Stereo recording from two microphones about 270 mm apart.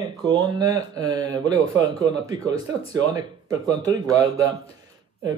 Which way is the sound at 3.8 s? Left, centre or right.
Centre.